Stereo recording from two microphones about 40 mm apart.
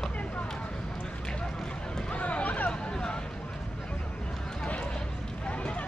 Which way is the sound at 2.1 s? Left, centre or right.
Left.